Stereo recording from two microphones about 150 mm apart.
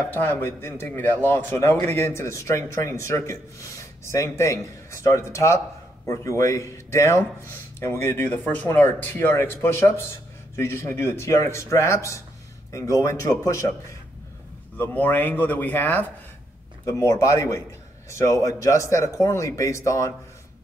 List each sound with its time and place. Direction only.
0.1 s a man's voice: 15° left (ahead or behind)
14.8 s a man's voice: 10° left (ahead or behind)